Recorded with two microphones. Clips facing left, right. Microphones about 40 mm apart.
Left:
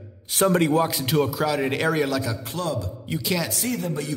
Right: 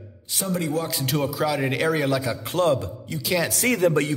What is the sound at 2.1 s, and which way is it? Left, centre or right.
Speech, centre.